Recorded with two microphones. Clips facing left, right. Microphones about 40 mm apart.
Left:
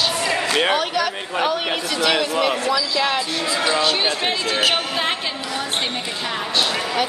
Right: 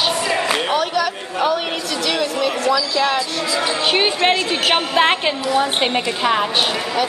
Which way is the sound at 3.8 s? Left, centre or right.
Right.